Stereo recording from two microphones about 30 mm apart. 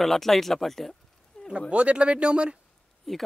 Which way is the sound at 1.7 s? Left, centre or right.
Right.